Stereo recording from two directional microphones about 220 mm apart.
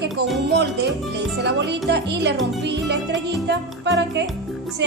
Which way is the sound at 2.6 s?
50° right (ahead or behind).